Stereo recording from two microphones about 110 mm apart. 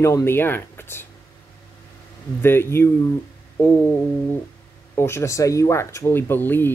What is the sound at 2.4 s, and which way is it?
Speech, 20° left (ahead or behind).